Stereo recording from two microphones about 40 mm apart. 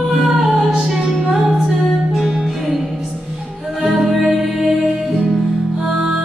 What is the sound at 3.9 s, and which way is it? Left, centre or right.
Music, centre.